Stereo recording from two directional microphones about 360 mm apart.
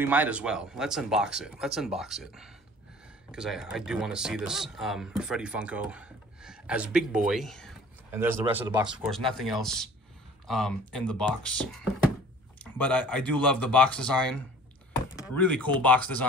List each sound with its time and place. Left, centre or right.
0.0 s speech: centre